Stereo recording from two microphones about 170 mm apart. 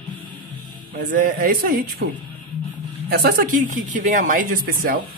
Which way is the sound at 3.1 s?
60° right (ahead or behind).